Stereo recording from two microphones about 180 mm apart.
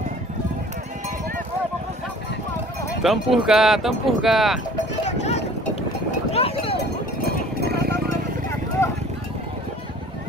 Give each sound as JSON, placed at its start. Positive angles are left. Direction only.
{"t": 3.0, "sound": "speech", "side_deg": 0}
{"t": 5.0, "sound": "a sound", "side_deg": 40}
{"t": 8.8, "sound": "clip-clop", "side_deg": 15}